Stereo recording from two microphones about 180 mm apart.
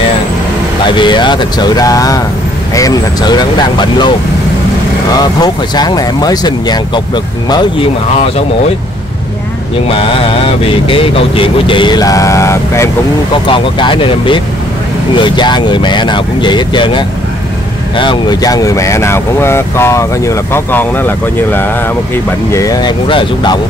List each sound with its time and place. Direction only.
0.8 s speech: 25° left (ahead or behind)
5.4 s speech: 20° left (ahead or behind)
9.8 s mantra: 30° left (ahead or behind)
10.9 s speech: 30° left (ahead or behind)
13.3 s speech: 25° left (ahead or behind)